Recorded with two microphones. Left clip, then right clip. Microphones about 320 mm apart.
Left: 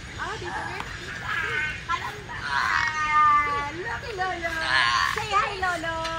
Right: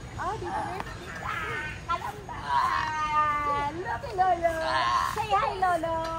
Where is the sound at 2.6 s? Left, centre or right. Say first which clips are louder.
Left 3 dB; right.